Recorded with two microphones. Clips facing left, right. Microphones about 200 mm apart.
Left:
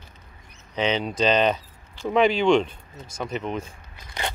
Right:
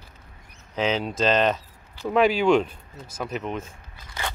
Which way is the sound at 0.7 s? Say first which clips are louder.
Even; centre (ahead or behind).